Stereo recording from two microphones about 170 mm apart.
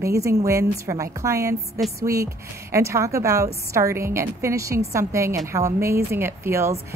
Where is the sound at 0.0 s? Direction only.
15° right (ahead or behind).